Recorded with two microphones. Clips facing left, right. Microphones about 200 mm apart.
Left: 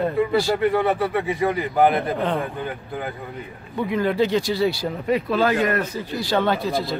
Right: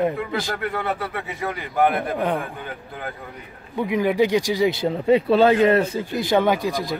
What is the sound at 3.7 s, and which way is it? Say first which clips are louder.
Speech: right 1 dB; 15° right (ahead or behind).